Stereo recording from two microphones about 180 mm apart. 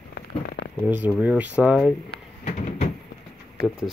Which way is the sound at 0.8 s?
10° right (ahead or behind).